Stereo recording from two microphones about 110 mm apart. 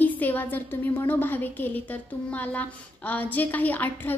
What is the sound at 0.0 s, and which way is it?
A woman's voice, 15° left (ahead or behind).